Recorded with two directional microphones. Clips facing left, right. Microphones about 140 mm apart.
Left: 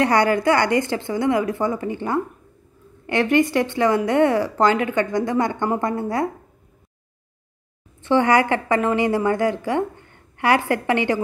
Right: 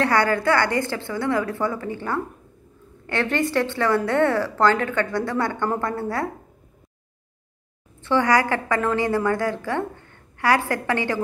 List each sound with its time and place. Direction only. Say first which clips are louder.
0.0 s a woman's voice: left 3 dB; 15° left (ahead or behind)
8.0 s a woman's voice: left 3 dB; 20° left (ahead or behind)